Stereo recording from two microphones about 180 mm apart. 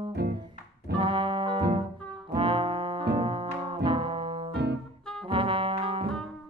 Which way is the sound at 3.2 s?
30° right (ahead or behind).